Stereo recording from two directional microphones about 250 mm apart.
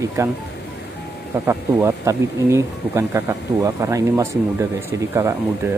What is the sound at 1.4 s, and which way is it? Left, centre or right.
Speech, centre.